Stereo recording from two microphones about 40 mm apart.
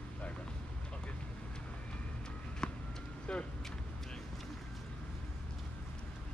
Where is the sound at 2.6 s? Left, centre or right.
Centre.